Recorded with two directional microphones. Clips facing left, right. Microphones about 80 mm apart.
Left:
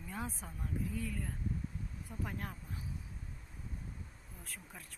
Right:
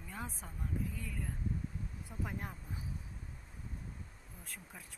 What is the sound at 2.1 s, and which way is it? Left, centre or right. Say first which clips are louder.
Speech: even; centre.